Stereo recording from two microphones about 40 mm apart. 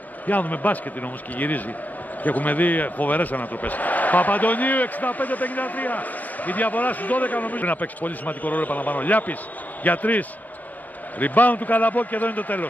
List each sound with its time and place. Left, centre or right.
0.3 s a man's voice: left